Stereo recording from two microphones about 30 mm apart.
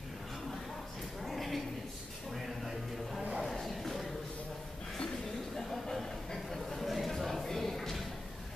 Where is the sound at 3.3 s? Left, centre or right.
Centre.